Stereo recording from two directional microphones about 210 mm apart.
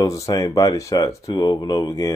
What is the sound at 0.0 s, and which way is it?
Speech, 15° left (ahead or behind).